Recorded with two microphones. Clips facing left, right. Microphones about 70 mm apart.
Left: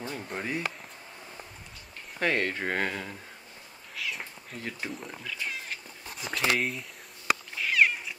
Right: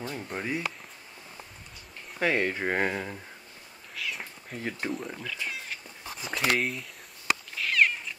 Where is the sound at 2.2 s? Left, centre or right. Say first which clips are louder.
Right 1 dB; centre.